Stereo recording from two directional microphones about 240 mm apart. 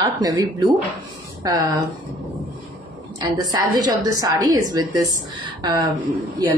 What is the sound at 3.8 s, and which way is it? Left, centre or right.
A woman's voice, centre.